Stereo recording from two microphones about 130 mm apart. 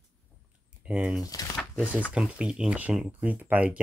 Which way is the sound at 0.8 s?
10° right (ahead or behind).